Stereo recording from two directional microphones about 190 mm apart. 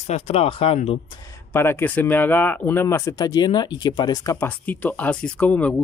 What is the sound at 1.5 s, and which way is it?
Speech, 10° left (ahead or behind).